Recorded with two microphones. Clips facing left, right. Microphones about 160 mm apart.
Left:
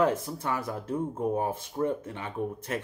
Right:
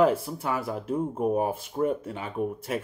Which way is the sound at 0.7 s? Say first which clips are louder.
Right 3 dB; 20° right (ahead or behind).